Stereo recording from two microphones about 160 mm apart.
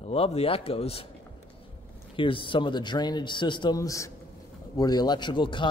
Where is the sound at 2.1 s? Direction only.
30° left (ahead or behind).